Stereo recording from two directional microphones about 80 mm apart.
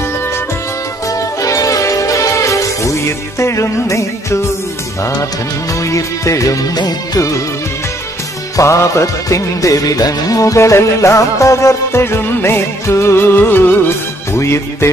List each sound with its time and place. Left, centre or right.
1.0 s music: left
5.8 s music: left
8.5 s music: left